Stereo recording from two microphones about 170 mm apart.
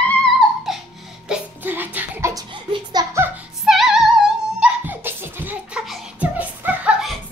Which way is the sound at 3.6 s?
Centre (ahead or behind).